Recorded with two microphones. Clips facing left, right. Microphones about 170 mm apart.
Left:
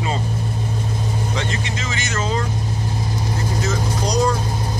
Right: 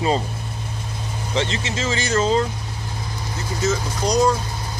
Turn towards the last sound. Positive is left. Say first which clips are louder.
# right 1 dB
turn(degrees=-5)  # may be behind; listen again after turning